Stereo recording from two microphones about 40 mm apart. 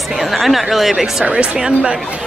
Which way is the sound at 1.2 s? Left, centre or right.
Right.